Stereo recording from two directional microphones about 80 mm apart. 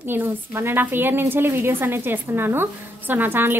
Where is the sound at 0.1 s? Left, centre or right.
Right.